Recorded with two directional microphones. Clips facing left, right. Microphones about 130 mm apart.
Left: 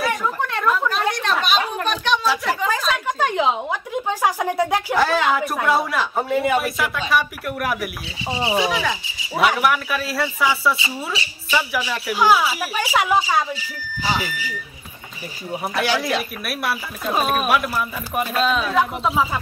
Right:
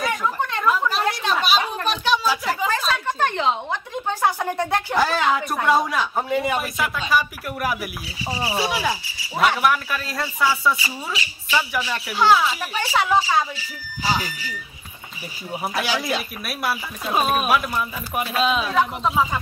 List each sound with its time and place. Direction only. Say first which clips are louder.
0.0 s a sound: left 1 dB; centre (ahead or behind)
2.9 s speech: left 1 dB; 10° left (ahead or behind)
8.3 s rub: left 4 dB; 25° left (ahead or behind)
8.6 s rub: left 1 dB; 5° right (ahead or behind)
9.5 s speech: left 1 dB; 5° left (ahead or behind)
11.2 s a woman's voice: even; 30° left (ahead or behind)
11.5 s speech: left 1 dB; centre (ahead or behind)
15.5 s speech: left 3 dB; centre (ahead or behind)